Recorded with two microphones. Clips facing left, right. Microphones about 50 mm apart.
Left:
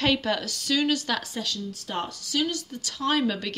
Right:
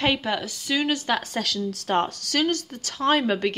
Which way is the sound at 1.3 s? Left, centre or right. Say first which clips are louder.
Right 5 dB; right.